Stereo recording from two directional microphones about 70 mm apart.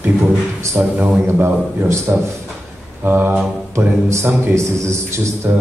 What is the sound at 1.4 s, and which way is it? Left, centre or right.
Speech, right.